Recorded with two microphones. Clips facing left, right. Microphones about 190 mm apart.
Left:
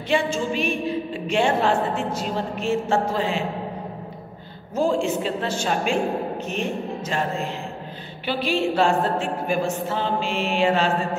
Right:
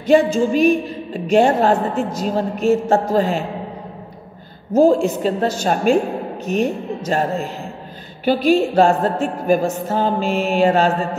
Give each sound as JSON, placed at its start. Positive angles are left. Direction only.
{"t": 0.0, "sound": "a woman's voice", "side_deg": -40}
{"t": 4.7, "sound": "a woman's voice", "side_deg": -40}
{"t": 8.3, "sound": "a woman's voice", "side_deg": -45}